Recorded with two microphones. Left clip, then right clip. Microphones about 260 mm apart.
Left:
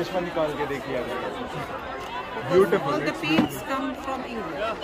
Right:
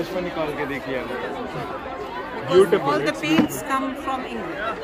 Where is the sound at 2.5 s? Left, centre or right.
Centre.